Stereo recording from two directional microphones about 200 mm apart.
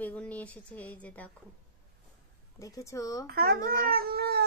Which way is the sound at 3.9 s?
50° right (ahead or behind).